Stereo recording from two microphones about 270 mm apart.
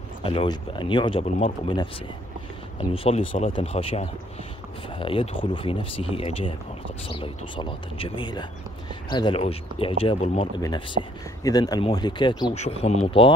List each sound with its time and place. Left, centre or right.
0.2 s speech: centre